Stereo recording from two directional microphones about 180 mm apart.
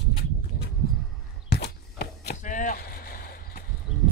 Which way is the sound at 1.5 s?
65° left (ahead or behind).